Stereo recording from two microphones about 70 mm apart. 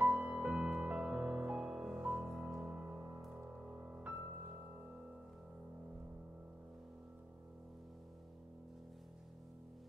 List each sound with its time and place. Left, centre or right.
0.0 s music: centre
2.0 s music: centre